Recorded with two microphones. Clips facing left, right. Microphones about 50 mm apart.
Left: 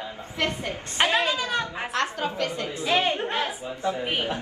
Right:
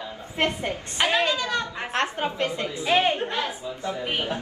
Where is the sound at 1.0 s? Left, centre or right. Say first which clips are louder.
Even; left.